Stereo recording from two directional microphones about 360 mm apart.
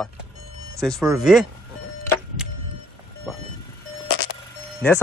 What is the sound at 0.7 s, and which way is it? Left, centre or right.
Speech, centre.